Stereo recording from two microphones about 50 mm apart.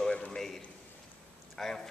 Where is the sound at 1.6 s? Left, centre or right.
Centre.